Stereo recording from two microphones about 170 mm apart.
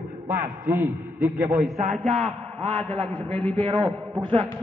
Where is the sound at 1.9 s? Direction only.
30° right (ahead or behind).